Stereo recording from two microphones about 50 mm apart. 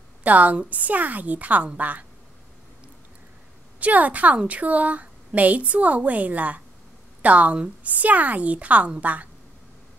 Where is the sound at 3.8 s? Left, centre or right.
Right.